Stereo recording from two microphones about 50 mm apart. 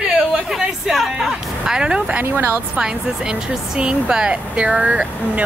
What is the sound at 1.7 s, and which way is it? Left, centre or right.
Speech, centre.